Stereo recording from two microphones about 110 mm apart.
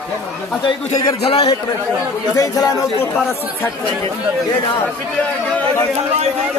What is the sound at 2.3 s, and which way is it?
Speech, 35° left (ahead or behind).